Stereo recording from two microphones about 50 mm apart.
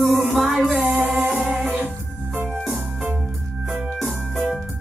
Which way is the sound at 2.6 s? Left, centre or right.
Centre.